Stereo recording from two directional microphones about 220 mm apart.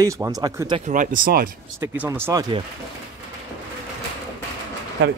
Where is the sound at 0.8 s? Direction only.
35° right (ahead or behind).